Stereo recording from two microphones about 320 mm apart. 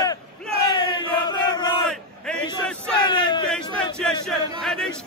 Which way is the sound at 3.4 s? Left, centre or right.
Centre.